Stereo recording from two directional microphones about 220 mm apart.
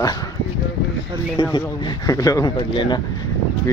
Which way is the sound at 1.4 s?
20° left (ahead or behind).